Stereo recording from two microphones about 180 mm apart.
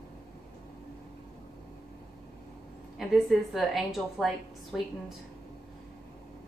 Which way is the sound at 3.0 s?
Centre (ahead or behind).